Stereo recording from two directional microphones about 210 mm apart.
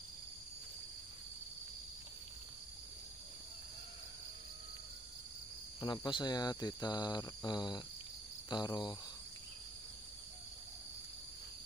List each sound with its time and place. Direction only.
5.8 s speech: 20° left (ahead or behind)